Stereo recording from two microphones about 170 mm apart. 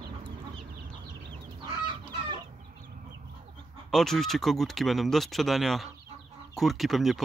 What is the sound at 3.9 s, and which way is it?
Speech, centre (ahead or behind).